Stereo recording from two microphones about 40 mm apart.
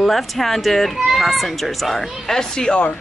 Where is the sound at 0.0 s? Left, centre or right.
Centre.